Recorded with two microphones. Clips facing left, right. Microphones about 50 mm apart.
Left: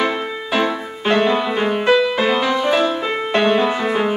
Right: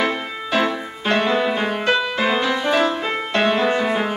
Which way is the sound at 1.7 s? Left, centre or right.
Centre.